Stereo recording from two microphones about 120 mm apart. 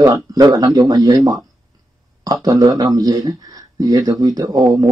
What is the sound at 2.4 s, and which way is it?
Speech, 30° right (ahead or behind).